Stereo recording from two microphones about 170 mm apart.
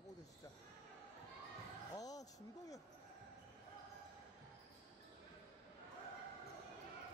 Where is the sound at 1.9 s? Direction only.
20° left (ahead or behind).